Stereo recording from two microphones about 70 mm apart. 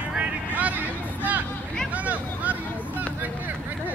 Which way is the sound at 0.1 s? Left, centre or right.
Centre.